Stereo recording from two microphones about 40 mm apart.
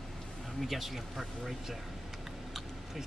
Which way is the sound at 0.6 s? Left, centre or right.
Centre.